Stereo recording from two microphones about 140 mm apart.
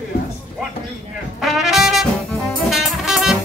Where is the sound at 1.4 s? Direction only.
Centre (ahead or behind).